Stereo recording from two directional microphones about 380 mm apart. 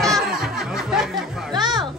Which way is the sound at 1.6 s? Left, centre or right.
Centre.